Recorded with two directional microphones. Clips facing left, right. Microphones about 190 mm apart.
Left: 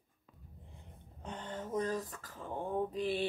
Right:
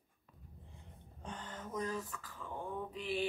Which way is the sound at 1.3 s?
25° left (ahead or behind).